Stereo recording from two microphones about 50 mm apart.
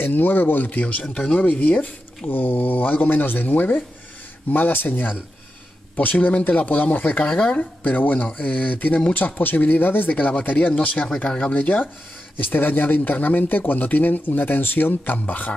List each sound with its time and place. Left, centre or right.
0.0 s speech: left
1.5 s speech: left
2.2 s speech: left
7.4 s speech: left
7.9 s speech: left
11.5 s speech: left